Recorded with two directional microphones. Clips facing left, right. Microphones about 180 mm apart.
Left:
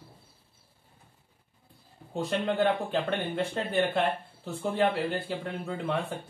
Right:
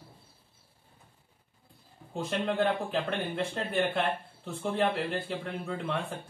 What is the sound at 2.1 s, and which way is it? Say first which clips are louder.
Speech: left 2 dB; centre (ahead or behind).